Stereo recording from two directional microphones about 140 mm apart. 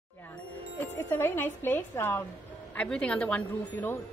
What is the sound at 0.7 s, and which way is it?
A woman's voice, 15° left (ahead or behind).